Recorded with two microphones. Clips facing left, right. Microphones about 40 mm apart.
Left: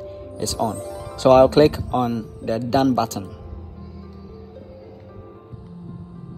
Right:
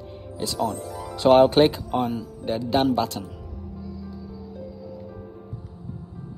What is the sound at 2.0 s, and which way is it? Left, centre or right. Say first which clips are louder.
Speech: left 3 dB; left.